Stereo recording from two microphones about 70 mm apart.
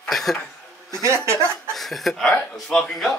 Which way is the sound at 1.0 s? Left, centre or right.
Right.